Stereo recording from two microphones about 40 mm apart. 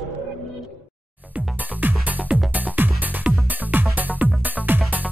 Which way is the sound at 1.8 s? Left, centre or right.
Right.